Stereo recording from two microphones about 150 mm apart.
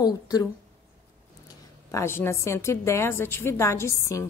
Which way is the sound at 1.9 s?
15° left (ahead or behind).